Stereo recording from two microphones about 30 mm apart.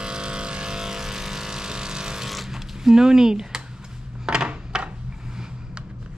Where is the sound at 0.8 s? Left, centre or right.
Centre.